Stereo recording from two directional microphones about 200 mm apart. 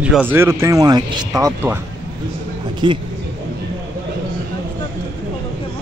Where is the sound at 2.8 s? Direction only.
25° right (ahead or behind).